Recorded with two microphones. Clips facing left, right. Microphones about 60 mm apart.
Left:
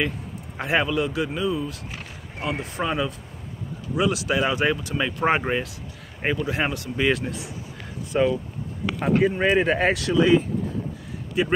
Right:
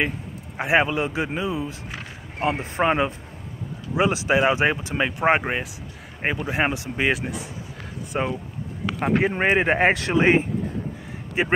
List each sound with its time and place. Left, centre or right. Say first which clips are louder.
0.6 s a man's voice: right 3 dB; centre
0.8 s speech: even; right
3.9 s speech: right 3 dB; right
9.4 s speech: even; right
9.8 s speech: right 1 dB; right